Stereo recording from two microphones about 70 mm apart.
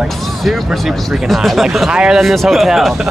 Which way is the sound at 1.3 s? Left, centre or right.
Centre.